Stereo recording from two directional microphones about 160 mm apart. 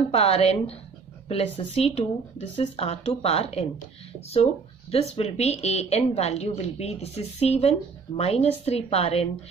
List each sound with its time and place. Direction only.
0.1 s a woman's voice: 40° left (ahead or behind)
4.9 s a woman's voice: 40° left (ahead or behind)